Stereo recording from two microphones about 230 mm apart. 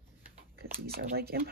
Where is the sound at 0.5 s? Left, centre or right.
Right.